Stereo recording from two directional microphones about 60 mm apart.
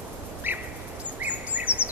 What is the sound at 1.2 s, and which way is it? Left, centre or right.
Bird vocalization, right.